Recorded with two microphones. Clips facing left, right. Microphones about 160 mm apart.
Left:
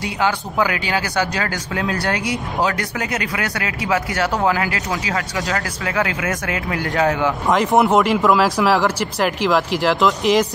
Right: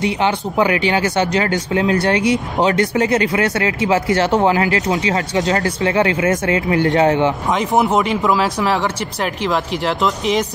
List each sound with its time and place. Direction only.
0.0 s speech: 25° right (ahead or behind)
7.5 s speech: centre (ahead or behind)